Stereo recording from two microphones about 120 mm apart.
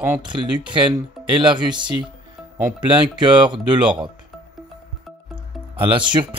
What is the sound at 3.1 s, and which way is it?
Speech, 40° right (ahead or behind).